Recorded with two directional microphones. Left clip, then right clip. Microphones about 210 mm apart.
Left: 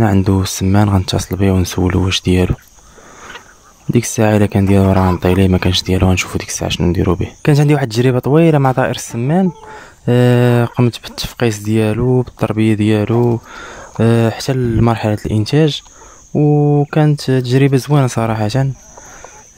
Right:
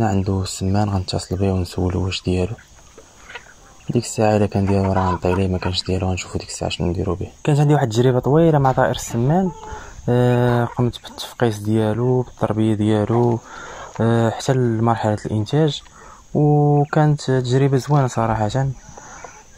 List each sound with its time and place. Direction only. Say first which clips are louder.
0.0 s speech: left 6 dB; 35° left (ahead or behind)
3.9 s speech: left 4 dB; 35° left (ahead or behind)
5.2 s speech: left 6 dB; 35° left (ahead or behind)